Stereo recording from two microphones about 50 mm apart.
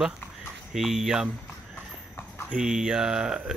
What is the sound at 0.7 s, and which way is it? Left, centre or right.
Speech, centre.